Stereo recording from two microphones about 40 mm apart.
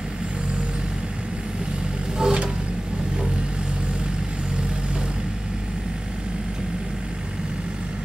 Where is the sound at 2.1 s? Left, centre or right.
Right.